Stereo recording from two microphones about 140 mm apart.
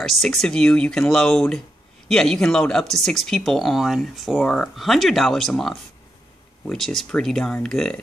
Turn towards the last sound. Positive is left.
turn(degrees=5)  # may be behind; listen again after turning